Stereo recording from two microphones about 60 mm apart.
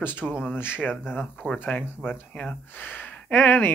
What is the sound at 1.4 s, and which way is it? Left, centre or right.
Speech, right.